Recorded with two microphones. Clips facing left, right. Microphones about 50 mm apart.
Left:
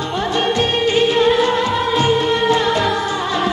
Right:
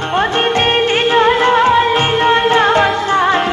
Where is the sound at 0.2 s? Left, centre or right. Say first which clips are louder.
Right 3 dB; right.